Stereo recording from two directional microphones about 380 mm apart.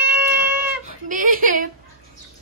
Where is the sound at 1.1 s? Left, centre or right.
Right.